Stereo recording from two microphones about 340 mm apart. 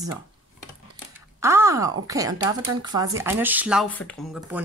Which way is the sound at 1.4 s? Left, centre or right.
Centre.